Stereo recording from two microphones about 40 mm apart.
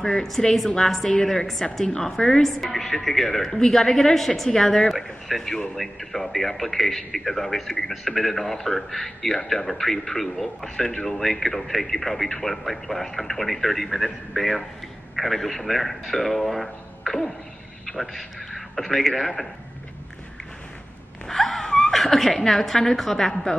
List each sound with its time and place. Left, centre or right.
0.0 s a man's voice: centre
17.0 s a sound: centre
17.8 s a man's voice: centre
21.3 s wail: centre
21.9 s a man's voice: centre